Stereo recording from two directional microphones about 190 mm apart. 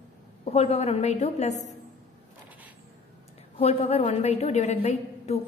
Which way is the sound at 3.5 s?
30° left (ahead or behind).